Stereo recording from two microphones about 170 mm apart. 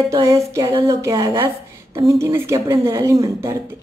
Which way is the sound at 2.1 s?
15° right (ahead or behind).